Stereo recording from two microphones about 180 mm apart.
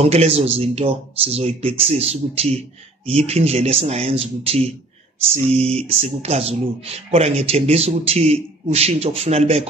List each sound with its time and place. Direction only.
0.0 s speech: 35° right (ahead or behind)